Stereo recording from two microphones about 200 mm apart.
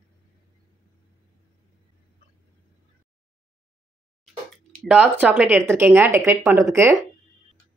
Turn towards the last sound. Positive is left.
turn(degrees=-10)  # may be behind; listen again after turning